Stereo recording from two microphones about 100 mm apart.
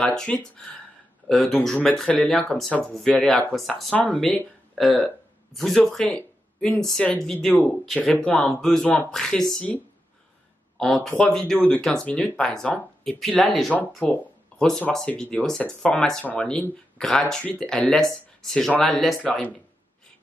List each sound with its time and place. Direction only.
0.0 s speech: 5° left (ahead or behind)
3.9 s speech: 15° left (ahead or behind)
4.2 s speech: centre (ahead or behind)
8.1 s speech: 10° left (ahead or behind)
11.0 s speech: 10° left (ahead or behind)
13.2 s speech: centre (ahead or behind)
13.7 s speech: 15° left (ahead or behind)
19.2 s speech: 15° left (ahead or behind)